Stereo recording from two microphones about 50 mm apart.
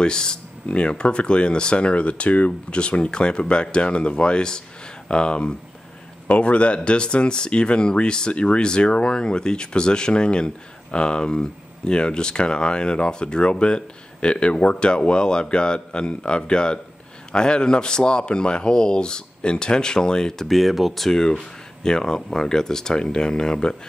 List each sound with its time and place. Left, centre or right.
0.0 s speech: centre
20.4 s speech: centre